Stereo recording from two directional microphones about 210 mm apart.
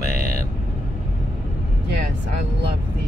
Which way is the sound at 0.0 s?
35° left (ahead or behind).